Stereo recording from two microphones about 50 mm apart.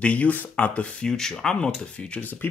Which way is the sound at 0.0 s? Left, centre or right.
Left.